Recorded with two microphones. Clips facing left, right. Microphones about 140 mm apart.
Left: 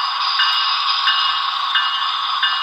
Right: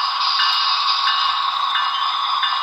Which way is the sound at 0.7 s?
30° right (ahead or behind).